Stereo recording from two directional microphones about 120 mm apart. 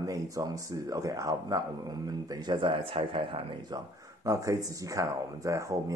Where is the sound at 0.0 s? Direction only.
30° right (ahead or behind).